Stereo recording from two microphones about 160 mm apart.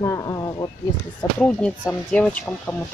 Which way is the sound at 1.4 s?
5° left (ahead or behind).